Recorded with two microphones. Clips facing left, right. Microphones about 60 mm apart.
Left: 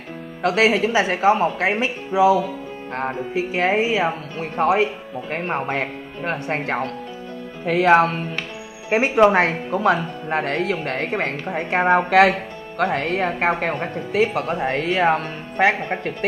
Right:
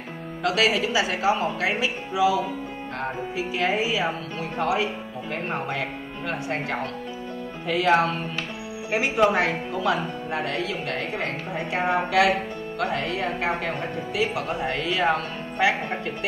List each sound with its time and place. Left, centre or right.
0.4 s speech: left